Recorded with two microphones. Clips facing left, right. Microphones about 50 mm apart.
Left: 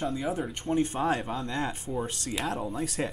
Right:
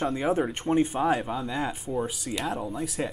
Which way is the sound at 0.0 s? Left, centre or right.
Right.